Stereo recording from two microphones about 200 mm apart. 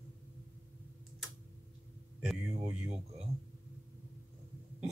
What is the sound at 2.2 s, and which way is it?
Speech, 5° right (ahead or behind).